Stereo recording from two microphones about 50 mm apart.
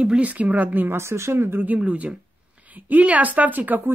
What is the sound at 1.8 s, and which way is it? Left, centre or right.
A woman's voice, right.